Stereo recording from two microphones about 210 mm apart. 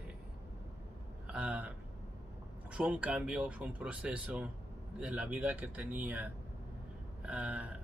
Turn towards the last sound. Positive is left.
turn(degrees=-5)  # may be behind; listen again after turning